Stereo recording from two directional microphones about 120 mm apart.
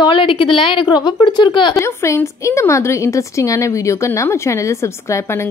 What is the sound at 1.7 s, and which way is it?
A woman's voice, 25° left (ahead or behind).